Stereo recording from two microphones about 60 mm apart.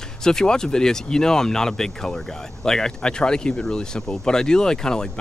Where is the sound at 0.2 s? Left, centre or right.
Centre.